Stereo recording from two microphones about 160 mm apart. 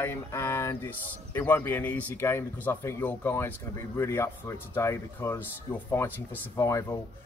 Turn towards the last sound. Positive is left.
turn(degrees=20)  # may be behind; listen again after turning